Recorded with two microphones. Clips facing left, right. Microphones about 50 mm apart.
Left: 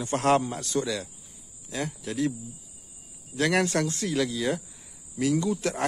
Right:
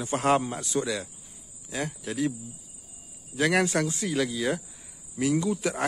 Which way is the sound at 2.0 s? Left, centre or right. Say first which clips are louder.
Left 1 dB; centre.